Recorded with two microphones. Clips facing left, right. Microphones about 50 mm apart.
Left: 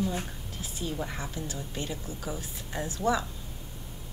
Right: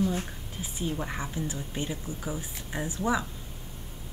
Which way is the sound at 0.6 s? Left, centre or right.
Right.